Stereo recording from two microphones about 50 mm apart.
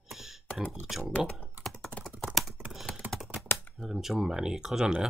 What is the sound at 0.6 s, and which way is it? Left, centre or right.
Speech, left.